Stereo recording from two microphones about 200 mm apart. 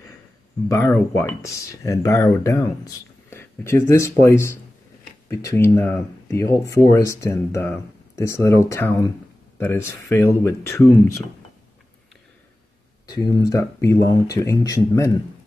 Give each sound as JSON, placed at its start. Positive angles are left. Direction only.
{"t": 0.7, "sound": "speech", "side_deg": 15}
{"t": 13.0, "sound": "speech", "side_deg": 20}